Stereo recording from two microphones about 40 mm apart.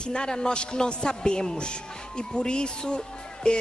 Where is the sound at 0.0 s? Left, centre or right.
Left.